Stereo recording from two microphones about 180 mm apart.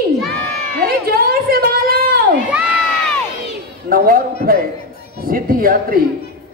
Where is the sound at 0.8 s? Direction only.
60° right (ahead or behind).